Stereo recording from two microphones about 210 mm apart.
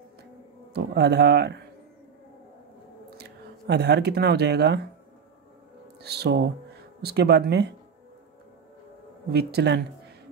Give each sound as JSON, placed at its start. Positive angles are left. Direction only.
{"t": 0.7, "sound": "speech", "side_deg": -50}
{"t": 3.2, "sound": "speech", "side_deg": -50}
{"t": 6.0, "sound": "speech", "side_deg": -50}
{"t": 9.3, "sound": "speech", "side_deg": -50}